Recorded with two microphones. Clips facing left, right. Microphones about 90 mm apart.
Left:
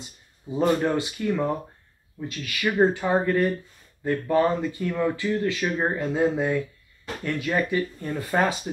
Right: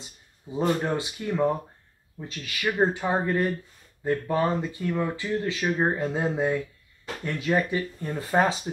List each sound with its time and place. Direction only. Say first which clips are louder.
0.5 s speech: left 3 dB; 20° right (ahead or behind)
2.6 s speech: left 3 dB; 10° right (ahead or behind)